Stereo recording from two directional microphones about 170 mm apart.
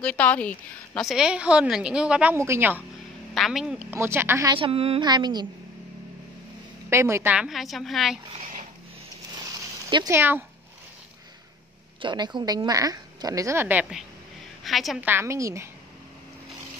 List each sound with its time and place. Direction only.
0.0 s a woman's voice: 5° left (ahead or behind); by 2.8 s 15° right (ahead or behind)
3.3 s a woman's voice: centre (ahead or behind)
4.5 s a woman's voice: 30° right (ahead or behind)
6.9 s a woman's voice: 15° right (ahead or behind); by 8.2 s centre (ahead or behind)
9.8 s speech: 25° right (ahead or behind)
10.1 s a woman's voice: 10° right (ahead or behind)
12.0 s a woman's voice: 25° right (ahead or behind); by 15.0 s centre (ahead or behind)
15.0 s a woman's voice: 10° right (ahead or behind)